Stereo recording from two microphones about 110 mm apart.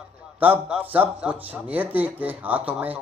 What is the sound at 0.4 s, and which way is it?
Speech, 10° right (ahead or behind).